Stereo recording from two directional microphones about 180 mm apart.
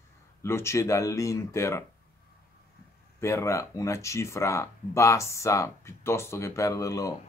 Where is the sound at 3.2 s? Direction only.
15° left (ahead or behind).